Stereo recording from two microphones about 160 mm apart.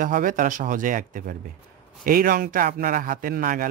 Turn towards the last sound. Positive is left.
turn(degrees=-60)  # may be behind; listen again after turning